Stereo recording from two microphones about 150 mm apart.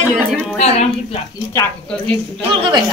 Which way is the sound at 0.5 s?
45° left (ahead or behind).